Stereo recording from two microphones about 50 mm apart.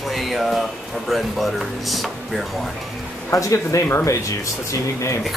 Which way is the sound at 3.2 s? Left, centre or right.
Left.